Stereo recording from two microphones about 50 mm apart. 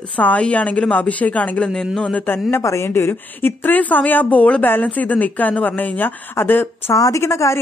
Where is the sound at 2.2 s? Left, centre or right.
Left.